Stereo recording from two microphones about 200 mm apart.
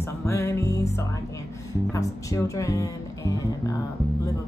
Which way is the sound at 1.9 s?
15° left (ahead or behind).